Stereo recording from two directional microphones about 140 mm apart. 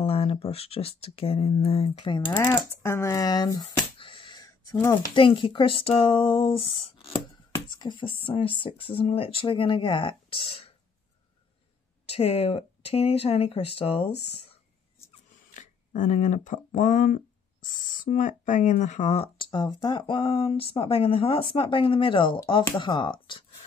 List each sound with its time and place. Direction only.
0.0 s speech: 45° left (ahead or behind)
2.2 s speech: 15° left (ahead or behind)
5.1 s speech: 35° left (ahead or behind)
7.1 s a sound: 20° left (ahead or behind)
7.9 s speech: 35° left (ahead or behind)
12.1 s speech: 45° left (ahead or behind)
15.5 s a sound: 65° left (ahead or behind)
16.7 s speech: 65° left (ahead or behind); by 23.4 s 35° left (ahead or behind)